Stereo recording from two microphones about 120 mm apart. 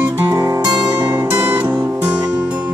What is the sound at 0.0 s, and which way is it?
Music, 15° right (ahead or behind).